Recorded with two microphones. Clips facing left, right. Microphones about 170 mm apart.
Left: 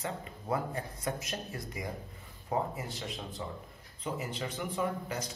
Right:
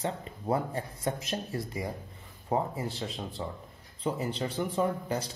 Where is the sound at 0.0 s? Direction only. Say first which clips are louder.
Right 5 dB; 30° right (ahead or behind).